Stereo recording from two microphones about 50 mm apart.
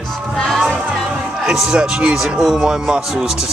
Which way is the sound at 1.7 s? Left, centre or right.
Centre.